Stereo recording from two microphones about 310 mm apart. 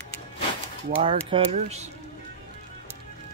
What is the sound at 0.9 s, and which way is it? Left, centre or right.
Speech, centre.